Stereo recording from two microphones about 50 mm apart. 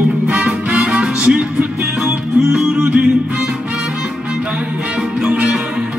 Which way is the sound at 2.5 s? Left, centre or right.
Centre.